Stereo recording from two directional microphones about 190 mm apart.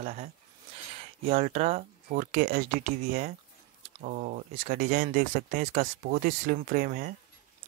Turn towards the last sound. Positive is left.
turn(degrees=-45)  # may be behind; listen again after turning